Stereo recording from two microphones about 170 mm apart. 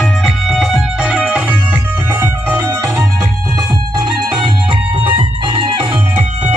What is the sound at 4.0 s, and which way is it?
Music, 25° right (ahead or behind).